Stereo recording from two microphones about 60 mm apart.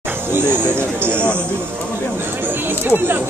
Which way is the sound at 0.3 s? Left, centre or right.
Right.